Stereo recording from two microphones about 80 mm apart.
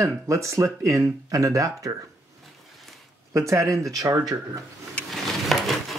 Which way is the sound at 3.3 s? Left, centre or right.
Right.